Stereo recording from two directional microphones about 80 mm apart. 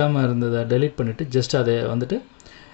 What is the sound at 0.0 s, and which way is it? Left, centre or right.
Speech, centre.